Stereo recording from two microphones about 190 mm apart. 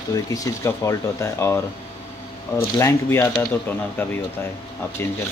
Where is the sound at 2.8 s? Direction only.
15° left (ahead or behind).